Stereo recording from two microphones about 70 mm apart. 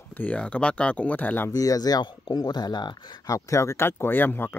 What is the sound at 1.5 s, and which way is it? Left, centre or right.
Speech, left.